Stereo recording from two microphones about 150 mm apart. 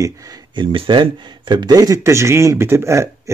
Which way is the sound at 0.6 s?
35° right (ahead or behind).